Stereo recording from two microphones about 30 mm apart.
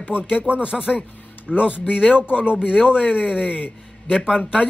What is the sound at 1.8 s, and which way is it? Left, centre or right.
A man's voice, right.